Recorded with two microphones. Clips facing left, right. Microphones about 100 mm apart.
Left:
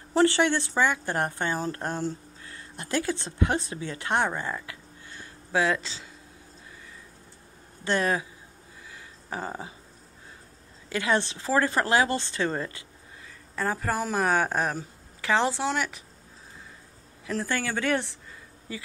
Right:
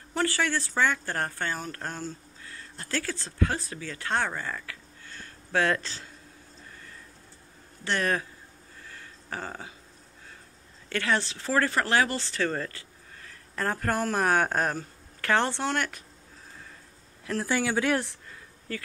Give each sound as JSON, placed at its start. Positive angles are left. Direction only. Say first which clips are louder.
{"t": 0.1, "sound": "speech", "louder": "left 6 dB", "side_deg": 25}
{"t": 7.8, "sound": "speech", "louder": "left 2 dB", "side_deg": 15}
{"t": 8.8, "sound": "a sound", "louder": "even", "side_deg": 10}
{"t": 10.9, "sound": "speech", "louder": "left 2 dB", "side_deg": 15}
{"t": 13.2, "sound": "speech", "louder": "left 1 dB", "side_deg": 5}
{"t": 17.5, "sound": "speech", "louder": "right 2 dB", "side_deg": -10}
{"t": 18.7, "sound": "speech", "louder": "right 2 dB", "side_deg": 5}